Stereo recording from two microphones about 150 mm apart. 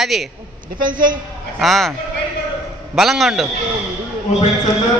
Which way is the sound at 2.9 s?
Centre (ahead or behind).